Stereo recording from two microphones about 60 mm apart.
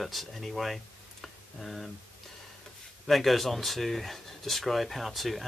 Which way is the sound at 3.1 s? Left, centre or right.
Centre.